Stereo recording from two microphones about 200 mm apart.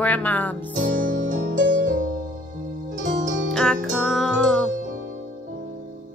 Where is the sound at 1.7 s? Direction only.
40° right (ahead or behind).